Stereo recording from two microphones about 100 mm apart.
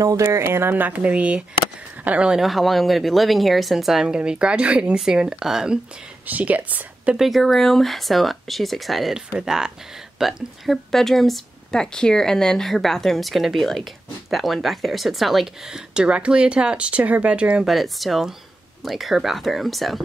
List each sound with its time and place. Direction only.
0.0 s speech: 35° right (ahead or behind); by 7.2 s 15° right (ahead or behind)
7.2 s speech: centre (ahead or behind)